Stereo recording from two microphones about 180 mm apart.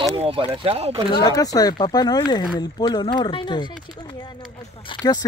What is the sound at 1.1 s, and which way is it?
Speech, 20° left (ahead or behind).